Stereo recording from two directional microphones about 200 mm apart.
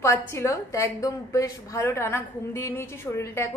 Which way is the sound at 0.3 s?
15° left (ahead or behind).